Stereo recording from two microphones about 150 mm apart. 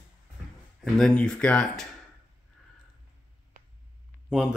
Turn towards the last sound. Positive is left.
turn(degrees=-5)  # may be behind; listen again after turning